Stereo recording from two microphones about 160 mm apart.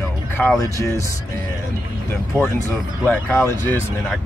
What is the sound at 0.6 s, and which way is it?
Speech, 20° left (ahead or behind).